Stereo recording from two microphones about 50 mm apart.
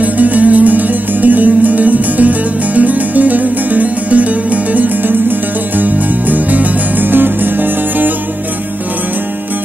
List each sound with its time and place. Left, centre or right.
0.0 s music: right